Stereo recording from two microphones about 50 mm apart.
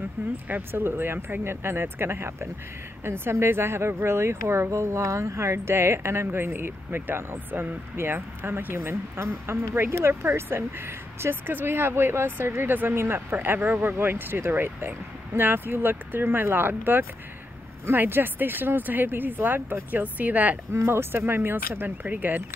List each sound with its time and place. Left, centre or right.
0.5 s speech: right
20.7 s speech: right
22.0 s speech: right